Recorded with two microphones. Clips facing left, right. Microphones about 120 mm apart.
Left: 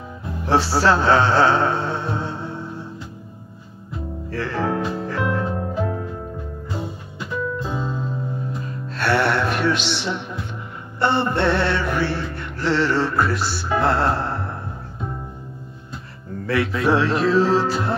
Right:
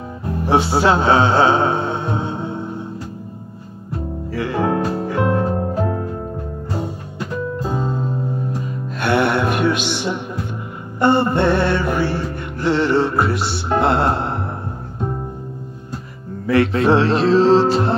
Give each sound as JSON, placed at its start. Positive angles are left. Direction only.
{"t": 0.5, "sound": "speech", "side_deg": -20}
{"t": 4.3, "sound": "music", "side_deg": -15}
{"t": 5.3, "sound": "music", "side_deg": -35}
{"t": 8.9, "sound": "music", "side_deg": -15}
{"t": 16.7, "sound": "music", "side_deg": -30}